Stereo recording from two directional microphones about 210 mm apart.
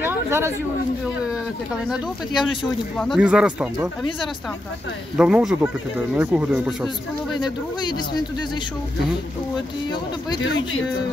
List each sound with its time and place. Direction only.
0.0 s a sound: 10° right (ahead or behind)
3.0 s speech: centre (ahead or behind)
5.1 s speech: 5° right (ahead or behind)
7.8 s speech: 20° left (ahead or behind)